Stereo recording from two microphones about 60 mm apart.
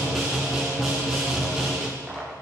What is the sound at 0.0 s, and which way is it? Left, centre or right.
Music, centre.